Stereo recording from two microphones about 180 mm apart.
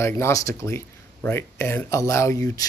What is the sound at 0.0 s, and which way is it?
Speech, 15° left (ahead or behind).